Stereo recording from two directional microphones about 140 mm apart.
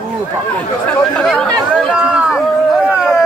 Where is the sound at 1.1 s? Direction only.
5° left (ahead or behind).